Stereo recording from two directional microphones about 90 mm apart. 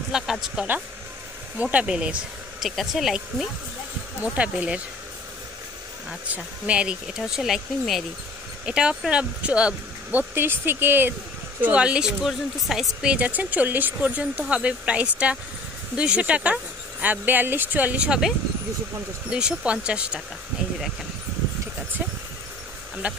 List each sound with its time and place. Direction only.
0.1 s speech: 5° right (ahead or behind)
2.6 s speech: centre (ahead or behind)
4.2 s speech: 15° right (ahead or behind)
6.0 s speech: 15° right (ahead or behind)
10.3 s speech: 25° right (ahead or behind)
12.2 s speech: centre (ahead or behind)
19.3 s speech: 10° right (ahead or behind)
23.0 s speech: 15° right (ahead or behind)